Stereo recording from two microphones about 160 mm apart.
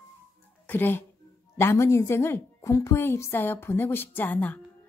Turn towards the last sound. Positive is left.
turn(degrees=10)  # may be behind; listen again after turning